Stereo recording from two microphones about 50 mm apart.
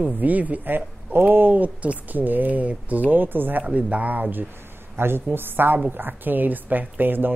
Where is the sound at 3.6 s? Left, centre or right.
Right.